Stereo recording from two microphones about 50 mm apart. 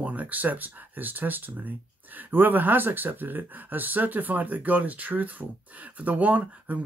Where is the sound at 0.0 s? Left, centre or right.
Right.